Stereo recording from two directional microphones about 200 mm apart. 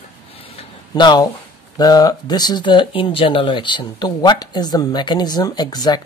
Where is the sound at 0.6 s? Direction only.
20° left (ahead or behind).